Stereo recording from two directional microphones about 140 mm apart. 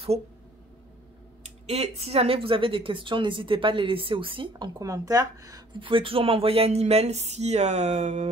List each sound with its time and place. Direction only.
1.4 s speech: 50° right (ahead or behind); by 5.8 s 25° right (ahead or behind)
5.8 s speech: 40° right (ahead or behind)